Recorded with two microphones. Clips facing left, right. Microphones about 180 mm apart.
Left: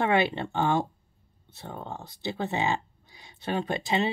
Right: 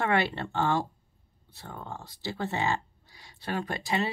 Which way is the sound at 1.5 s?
20° left (ahead or behind).